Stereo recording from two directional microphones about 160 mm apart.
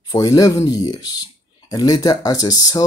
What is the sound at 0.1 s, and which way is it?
Speech, 20° left (ahead or behind).